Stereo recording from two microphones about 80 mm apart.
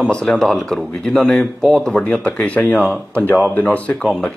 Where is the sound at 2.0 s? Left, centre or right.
Centre.